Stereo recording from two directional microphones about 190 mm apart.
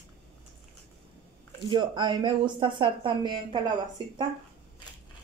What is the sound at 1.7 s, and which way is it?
Speech, 25° right (ahead or behind).